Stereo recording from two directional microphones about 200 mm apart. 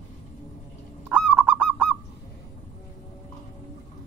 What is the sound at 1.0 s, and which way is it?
Goose, 5° right (ahead or behind).